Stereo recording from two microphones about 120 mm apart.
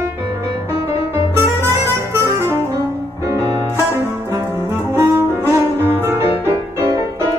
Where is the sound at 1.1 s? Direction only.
20° right (ahead or behind).